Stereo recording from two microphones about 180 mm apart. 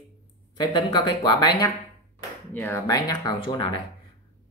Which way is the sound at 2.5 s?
15° left (ahead or behind).